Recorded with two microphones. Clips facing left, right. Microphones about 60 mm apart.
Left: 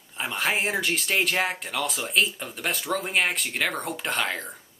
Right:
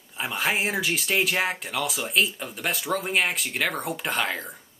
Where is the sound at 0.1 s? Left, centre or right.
Centre.